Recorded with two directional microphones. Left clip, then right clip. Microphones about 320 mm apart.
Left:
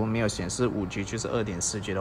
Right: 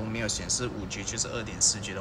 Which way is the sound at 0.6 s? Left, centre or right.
Centre.